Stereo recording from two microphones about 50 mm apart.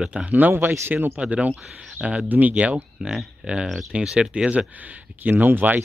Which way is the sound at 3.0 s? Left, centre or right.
Centre.